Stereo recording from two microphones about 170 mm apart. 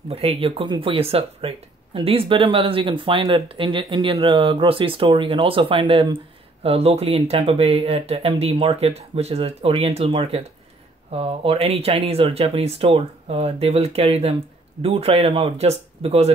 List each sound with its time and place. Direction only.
0.1 s speech: 35° right (ahead or behind)